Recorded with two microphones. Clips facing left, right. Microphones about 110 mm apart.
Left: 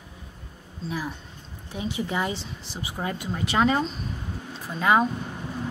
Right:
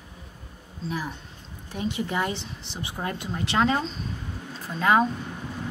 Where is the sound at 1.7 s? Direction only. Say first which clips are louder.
Right 1 dB; centre (ahead or behind).